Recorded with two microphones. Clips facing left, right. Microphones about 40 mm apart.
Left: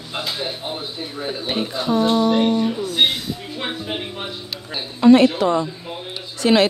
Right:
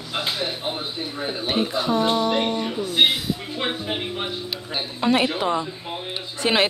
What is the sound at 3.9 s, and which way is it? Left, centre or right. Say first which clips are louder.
Music: even; centre.